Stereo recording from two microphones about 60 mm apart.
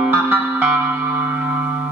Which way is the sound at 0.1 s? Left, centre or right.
Right.